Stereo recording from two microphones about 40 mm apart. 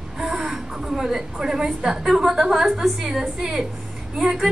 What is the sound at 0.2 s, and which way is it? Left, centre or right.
A woman's voice, centre.